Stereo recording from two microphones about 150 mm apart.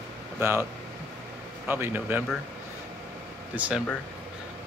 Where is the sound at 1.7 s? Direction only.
15° right (ahead or behind).